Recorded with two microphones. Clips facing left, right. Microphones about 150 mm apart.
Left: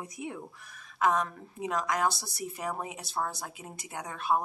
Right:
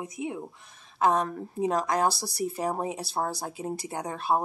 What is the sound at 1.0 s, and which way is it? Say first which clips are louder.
Speech: right 3 dB; 30° right (ahead or behind).